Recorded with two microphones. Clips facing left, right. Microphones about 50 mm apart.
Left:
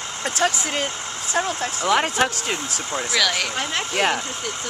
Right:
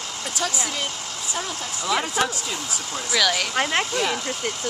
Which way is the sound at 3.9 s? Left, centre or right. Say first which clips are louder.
Left 3 dB; left.